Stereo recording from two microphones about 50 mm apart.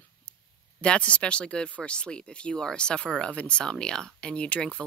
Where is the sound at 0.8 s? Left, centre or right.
Left.